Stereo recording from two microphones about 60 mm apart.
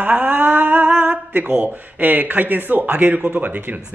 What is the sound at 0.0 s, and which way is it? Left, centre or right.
Speech, right.